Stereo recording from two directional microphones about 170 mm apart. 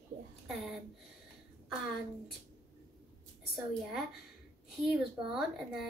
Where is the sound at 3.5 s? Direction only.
Centre (ahead or behind).